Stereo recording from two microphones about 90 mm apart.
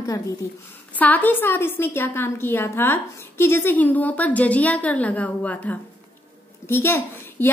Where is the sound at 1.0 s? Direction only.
20° left (ahead or behind).